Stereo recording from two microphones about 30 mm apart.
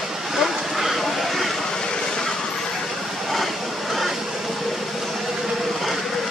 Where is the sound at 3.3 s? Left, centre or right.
Centre.